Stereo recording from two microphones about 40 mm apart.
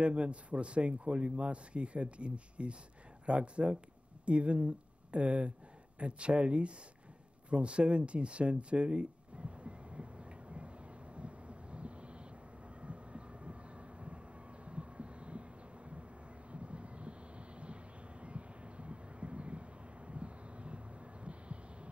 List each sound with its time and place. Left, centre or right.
0.0 s speech: right
7.4 s a sound: right
11.1 s vehicle: right
12.8 s train: right
16.5 s vehicle: right
18.2 s vehicle: right